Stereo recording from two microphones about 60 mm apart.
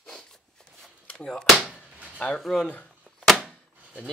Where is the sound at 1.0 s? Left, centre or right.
Centre.